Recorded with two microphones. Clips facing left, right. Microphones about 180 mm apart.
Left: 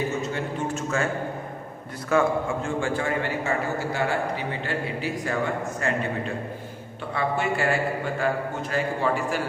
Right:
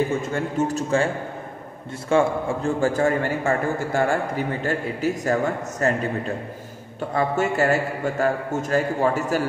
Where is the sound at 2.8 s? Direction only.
45° right (ahead or behind).